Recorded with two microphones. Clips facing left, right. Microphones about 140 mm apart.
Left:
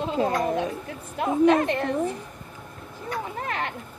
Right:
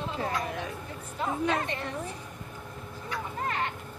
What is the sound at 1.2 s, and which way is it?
Speech, 65° left (ahead or behind).